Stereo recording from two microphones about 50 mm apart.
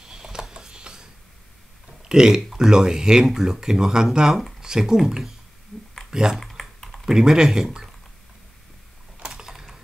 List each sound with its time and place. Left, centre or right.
0.1 s a sound: centre
2.0 s speech: centre
6.0 s typing: centre
6.3 s typing: centre
7.1 s speech: centre
9.2 s typing: centre